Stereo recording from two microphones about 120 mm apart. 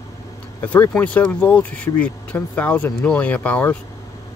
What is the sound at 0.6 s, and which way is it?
Speech, 15° left (ahead or behind).